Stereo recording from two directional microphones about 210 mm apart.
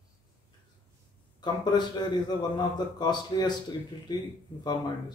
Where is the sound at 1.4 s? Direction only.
20° left (ahead or behind).